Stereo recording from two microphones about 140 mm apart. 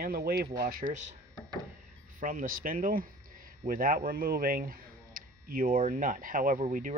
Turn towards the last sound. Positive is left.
turn(degrees=-80)